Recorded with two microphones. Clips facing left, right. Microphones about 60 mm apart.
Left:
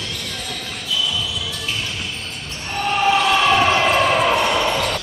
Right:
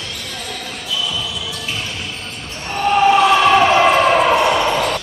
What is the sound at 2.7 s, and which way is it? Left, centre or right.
Basketball bounce, centre.